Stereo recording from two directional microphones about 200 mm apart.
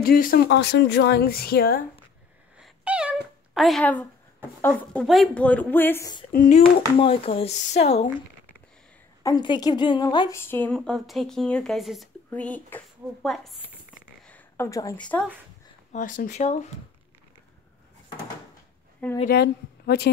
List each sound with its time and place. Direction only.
0.0 s speech: 45° left (ahead or behind)
2.6 s cat: 5° right (ahead or behind)
3.5 s a woman's voice: centre (ahead or behind); by 6.2 s 15° left (ahead or behind)
6.3 s speech: 45° left (ahead or behind)
7.0 s speech: 25° left (ahead or behind)
9.2 s a woman's voice: 20° left (ahead or behind); by 13.6 s centre (ahead or behind)
14.2 s a sound: 10° left (ahead or behind)
15.0 s speech: 5° left (ahead or behind)
15.9 s speech: 40° left (ahead or behind)
19.2 s speech: 55° left (ahead or behind)